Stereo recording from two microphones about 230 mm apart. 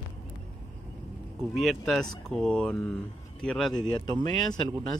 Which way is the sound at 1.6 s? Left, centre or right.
Centre.